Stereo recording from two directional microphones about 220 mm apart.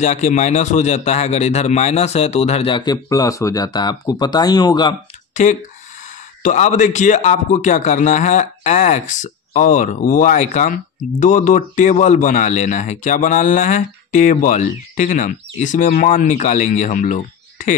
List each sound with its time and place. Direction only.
0.0 s a man's voice: 30° left (ahead or behind)
5.3 s a man's voice: 35° left (ahead or behind)